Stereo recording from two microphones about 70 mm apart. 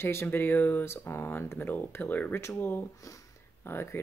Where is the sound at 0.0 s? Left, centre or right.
Left.